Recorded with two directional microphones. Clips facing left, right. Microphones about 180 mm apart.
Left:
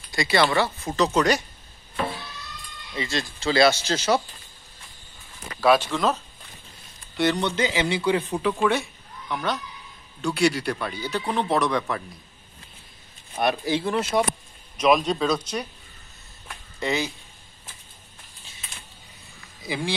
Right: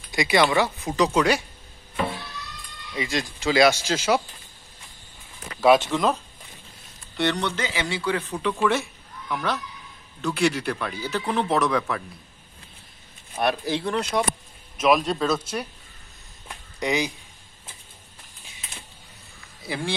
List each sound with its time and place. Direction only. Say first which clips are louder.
0.1 s speech: right 1 dB; 15° right (ahead or behind)
2.9 s speech: right 1 dB; 15° right (ahead or behind)
5.6 s speech: right 2 dB; 20° right (ahead or behind)
7.2 s speech: left 2 dB; 5° left (ahead or behind)
8.4 s speech: left 1 dB; 5° left (ahead or behind)
11.6 s speech: right 1 dB; 5° right (ahead or behind)
13.3 s speech: left 1 dB; centre (ahead or behind)
16.4 s a sound: right 1 dB; 15° right (ahead or behind)